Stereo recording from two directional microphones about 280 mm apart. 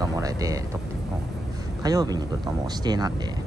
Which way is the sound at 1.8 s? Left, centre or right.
Centre.